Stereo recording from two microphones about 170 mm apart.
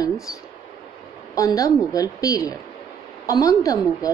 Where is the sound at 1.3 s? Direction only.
20° left (ahead or behind).